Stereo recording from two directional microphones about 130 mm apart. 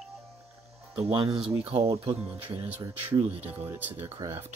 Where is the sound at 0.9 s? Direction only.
50° right (ahead or behind).